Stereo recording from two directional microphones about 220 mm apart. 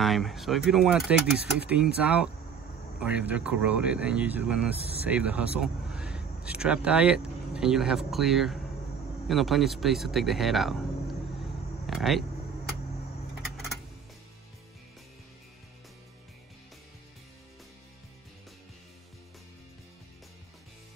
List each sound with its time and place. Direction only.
0.0 s speech: centre (ahead or behind)
4.7 s speech: 25° right (ahead or behind)
5.0 s speech: 5° right (ahead or behind)
11.8 s speech: centre (ahead or behind)